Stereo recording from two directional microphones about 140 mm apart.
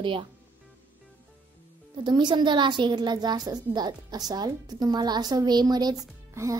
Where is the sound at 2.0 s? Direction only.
35° right (ahead or behind).